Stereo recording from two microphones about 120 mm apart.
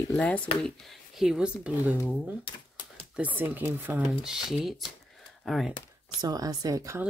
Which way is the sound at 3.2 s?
15° right (ahead or behind).